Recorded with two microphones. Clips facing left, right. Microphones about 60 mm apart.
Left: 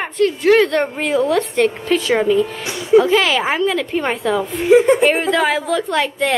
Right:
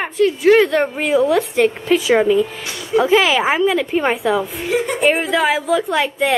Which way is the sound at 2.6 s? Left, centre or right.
Left.